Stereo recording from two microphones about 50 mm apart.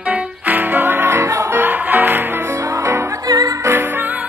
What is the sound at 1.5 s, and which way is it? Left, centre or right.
Music, right.